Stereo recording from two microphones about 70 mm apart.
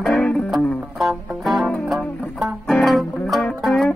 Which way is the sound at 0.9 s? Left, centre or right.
Centre.